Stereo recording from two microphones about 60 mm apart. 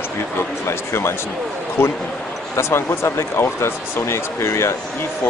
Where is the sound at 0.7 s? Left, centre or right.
Left.